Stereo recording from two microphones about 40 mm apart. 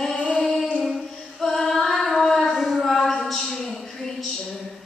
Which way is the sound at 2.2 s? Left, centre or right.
Centre.